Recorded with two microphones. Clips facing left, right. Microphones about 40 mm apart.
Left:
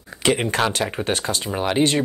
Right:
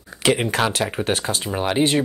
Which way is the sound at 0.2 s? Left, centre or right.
Centre.